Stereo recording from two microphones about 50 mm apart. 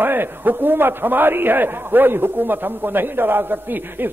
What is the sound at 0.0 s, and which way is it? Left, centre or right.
A man's voice, right.